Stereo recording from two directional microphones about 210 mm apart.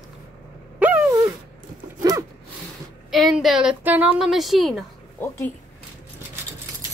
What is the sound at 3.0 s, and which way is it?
A woman's voice, centre (ahead or behind).